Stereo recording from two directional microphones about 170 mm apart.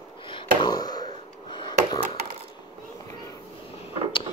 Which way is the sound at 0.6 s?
25° left (ahead or behind).